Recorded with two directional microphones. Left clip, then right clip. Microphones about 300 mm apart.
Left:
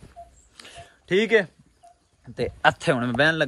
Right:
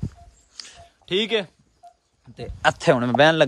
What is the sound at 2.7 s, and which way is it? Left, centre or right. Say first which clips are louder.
Speech: right 5 dB; centre.